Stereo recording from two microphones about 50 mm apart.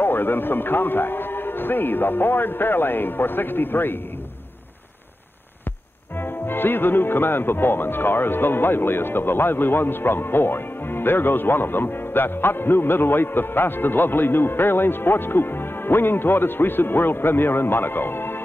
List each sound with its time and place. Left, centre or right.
0.0 s speech: left
6.1 s speech: left